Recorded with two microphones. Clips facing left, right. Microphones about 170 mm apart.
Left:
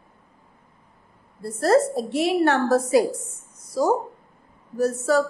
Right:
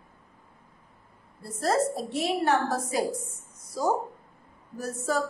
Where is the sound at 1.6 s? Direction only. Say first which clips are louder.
Left 7 dB; 70° left (ahead or behind).